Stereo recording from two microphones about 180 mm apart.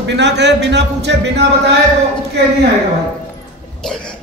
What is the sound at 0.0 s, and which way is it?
Speech, 75° right (ahead or behind).